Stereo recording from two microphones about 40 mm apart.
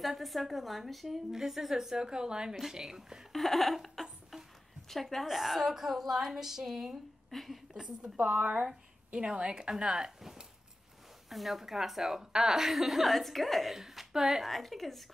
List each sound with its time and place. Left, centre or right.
0.0 s a woman's voice: centre
3.3 s a sound: centre
4.8 s a woman's voice: centre
5.2 s a woman's voice: centre
7.2 s a woman's voice: centre
7.7 s a woman's voice: centre
8.3 s speech: right
9.1 s a woman's voice: right
11.2 s a woman's voice: centre
13.7 s a woman's voice: centre